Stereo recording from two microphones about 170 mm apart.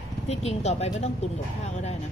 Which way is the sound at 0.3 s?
40° left (ahead or behind).